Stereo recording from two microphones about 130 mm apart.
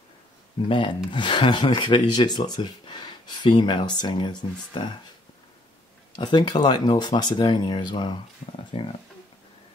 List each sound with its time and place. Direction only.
0.7 s speech: 40° left (ahead or behind)
6.1 s speech: 35° left (ahead or behind)
8.4 s speech: 75° left (ahead or behind)